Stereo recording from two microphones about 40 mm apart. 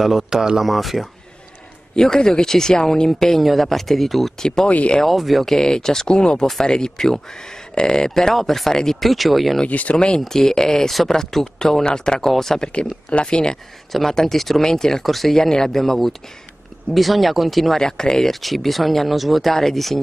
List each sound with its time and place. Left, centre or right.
0.0 s speech: centre
0.7 s speech: centre
2.0 s speech: centre
4.4 s speech: centre
4.6 s speech: left
5.0 s speech: centre
5.6 s speech: centre
9.7 s speech: left
9.9 s speech: left
10.2 s speech: centre
12.6 s speech: left
14.1 s speech: centre
17.7 s speech: centre
18.3 s speech: centre